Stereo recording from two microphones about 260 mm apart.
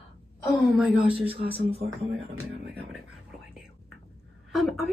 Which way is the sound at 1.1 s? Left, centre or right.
Right.